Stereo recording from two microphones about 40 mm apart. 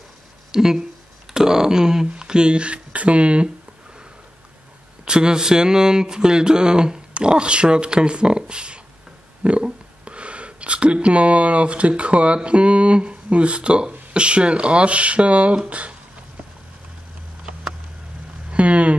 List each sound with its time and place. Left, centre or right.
0.5 s speech: centre; by 3.4 s right
5.0 s speech: right
18.5 s speech: right